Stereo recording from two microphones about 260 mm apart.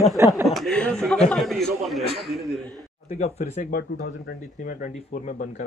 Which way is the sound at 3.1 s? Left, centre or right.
Left.